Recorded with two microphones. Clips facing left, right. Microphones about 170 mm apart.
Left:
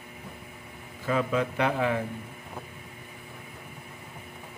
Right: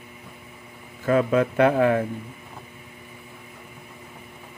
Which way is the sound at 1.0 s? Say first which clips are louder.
Right 7 dB; 55° right (ahead or behind).